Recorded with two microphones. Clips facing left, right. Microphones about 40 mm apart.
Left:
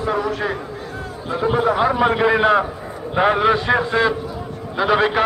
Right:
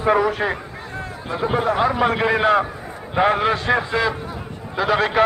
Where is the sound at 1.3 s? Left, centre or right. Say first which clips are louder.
Left 2 dB; centre.